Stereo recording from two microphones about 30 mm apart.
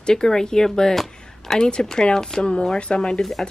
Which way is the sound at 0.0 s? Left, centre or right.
Left.